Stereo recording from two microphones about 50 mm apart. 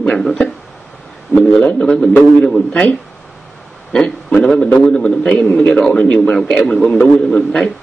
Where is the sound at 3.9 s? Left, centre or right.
Centre.